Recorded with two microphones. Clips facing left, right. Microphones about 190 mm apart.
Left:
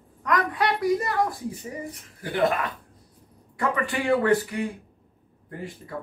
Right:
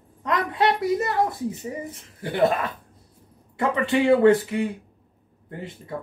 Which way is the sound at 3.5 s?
25° right (ahead or behind).